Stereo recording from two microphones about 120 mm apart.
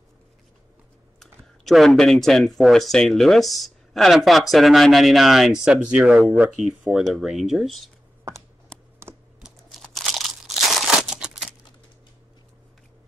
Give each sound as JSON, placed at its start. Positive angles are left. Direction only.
{"t": 1.2, "sound": "speech", "side_deg": 0}
{"t": 9.0, "sound": "computer keyboard", "side_deg": -20}
{"t": 9.4, "sound": "crunch", "side_deg": 0}